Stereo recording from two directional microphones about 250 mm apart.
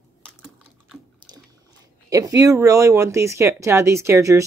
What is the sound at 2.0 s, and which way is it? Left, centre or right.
A woman's voice, centre.